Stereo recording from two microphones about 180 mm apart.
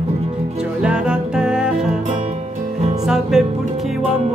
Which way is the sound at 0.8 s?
5° right (ahead or behind).